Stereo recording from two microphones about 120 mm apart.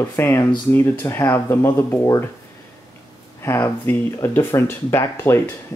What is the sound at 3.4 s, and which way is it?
Speech, 20° left (ahead or behind).